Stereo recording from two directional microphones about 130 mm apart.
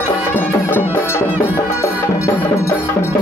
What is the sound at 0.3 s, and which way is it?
Music, 15° left (ahead or behind).